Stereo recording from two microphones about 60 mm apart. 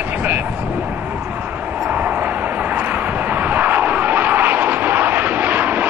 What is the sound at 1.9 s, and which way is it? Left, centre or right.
Vehicle, right.